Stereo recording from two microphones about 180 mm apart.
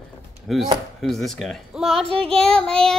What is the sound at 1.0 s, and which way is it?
Child singing, centre (ahead or behind).